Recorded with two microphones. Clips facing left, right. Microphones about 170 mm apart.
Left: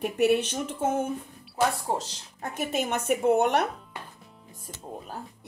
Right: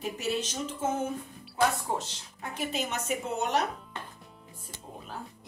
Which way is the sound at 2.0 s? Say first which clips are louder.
Left 2 dB; 45° left (ahead or behind).